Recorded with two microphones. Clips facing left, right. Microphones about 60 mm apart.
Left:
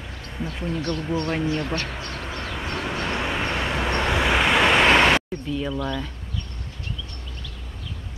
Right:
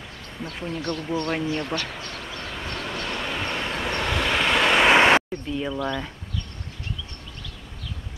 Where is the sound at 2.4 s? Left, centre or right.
Centre.